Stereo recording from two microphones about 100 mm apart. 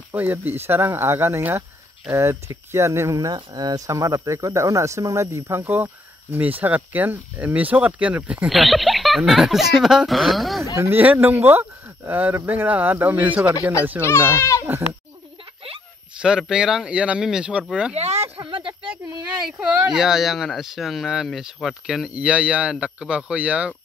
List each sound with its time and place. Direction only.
0.1 s speech: 20° right (ahead or behind)
8.5 s speech: centre (ahead or behind)
10.8 s speech: 20° right (ahead or behind)
14.0 s speech: 25° right (ahead or behind)
14.3 s speech: 30° left (ahead or behind)
16.2 s speech: 10° right (ahead or behind)
17.9 s speech: 90° right
18.4 s speech: 55° right (ahead or behind)
19.9 s speech: 5° right (ahead or behind)